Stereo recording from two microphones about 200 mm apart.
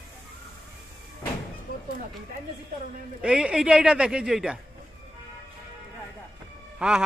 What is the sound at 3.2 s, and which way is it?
Speech, 5° right (ahead or behind).